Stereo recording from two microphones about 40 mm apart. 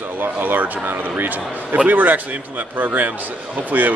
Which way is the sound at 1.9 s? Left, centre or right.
Right.